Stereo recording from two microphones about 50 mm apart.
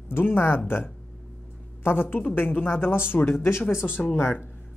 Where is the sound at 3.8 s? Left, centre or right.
Centre.